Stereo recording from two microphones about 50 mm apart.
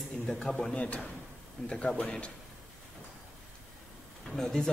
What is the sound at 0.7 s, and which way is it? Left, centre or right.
Speech, left.